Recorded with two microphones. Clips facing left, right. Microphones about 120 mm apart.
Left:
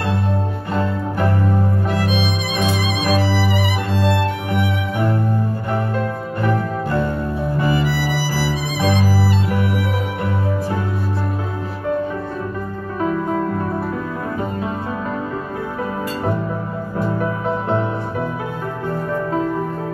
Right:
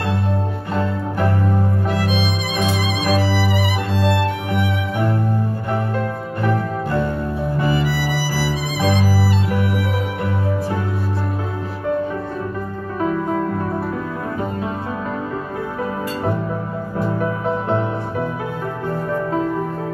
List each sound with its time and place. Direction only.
1.9 s music: 5° right (ahead or behind)
7.6 s violin: 10° right (ahead or behind)